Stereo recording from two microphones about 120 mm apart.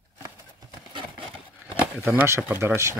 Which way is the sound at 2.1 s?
25° right (ahead or behind).